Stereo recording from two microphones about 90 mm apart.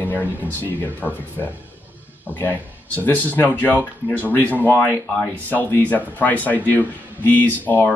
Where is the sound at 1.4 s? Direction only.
30° left (ahead or behind).